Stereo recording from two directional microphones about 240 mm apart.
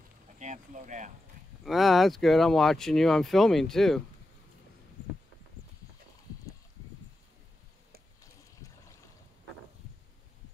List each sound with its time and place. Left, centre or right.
0.4 s speech: right
1.6 s speech: centre
8.6 s boat: centre